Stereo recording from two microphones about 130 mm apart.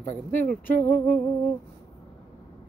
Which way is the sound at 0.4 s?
85° left.